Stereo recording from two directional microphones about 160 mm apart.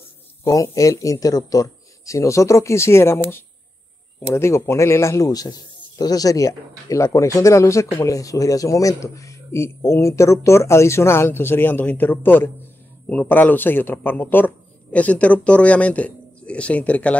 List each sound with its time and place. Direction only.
0.4 s speech: 20° left (ahead or behind)